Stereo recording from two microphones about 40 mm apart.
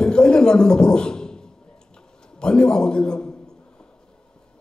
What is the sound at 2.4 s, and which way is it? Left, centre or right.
Speech, left.